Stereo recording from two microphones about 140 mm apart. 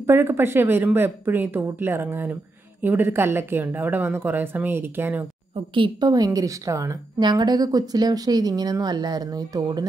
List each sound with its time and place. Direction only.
0.0 s speech: 15° right (ahead or behind)
5.8 s a woman's voice: 30° right (ahead or behind)